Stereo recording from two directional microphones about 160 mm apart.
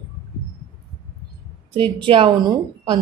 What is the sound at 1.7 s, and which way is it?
A woman's voice, 35° right (ahead or behind).